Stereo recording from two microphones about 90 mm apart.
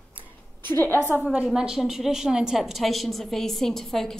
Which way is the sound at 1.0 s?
20° right (ahead or behind).